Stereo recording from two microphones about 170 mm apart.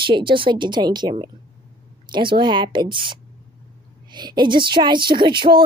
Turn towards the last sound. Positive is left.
turn(degrees=-30)  # may be behind; listen again after turning